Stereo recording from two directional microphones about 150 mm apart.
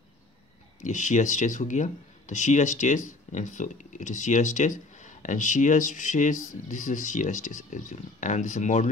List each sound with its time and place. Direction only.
0.7 s speech: 55° left (ahead or behind)